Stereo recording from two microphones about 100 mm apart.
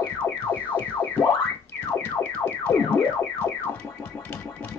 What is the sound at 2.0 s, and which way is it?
Music, 20° left (ahead or behind).